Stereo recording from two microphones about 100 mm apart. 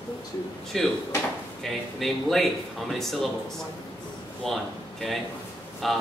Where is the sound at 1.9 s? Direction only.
Centre (ahead or behind).